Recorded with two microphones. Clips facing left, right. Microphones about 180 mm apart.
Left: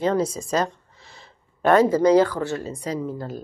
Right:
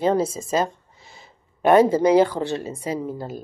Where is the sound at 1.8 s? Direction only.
25° right (ahead or behind).